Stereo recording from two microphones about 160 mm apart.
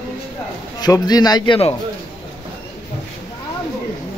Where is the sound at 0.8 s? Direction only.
25° left (ahead or behind).